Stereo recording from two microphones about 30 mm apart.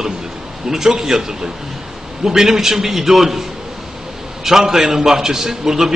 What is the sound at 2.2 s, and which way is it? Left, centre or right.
A man's voice, centre.